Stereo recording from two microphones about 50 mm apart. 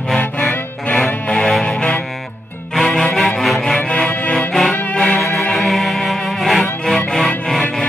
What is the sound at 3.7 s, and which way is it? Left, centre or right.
Music, left.